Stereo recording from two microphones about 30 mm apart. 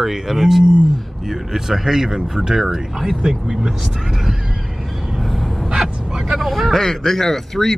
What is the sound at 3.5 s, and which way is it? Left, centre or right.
Speech, right.